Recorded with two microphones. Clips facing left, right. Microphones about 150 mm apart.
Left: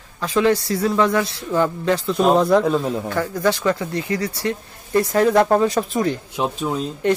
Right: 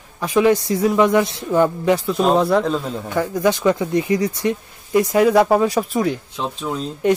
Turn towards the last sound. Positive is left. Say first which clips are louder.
# left 2 dB
turn(degrees=15)  # may be behind; listen again after turning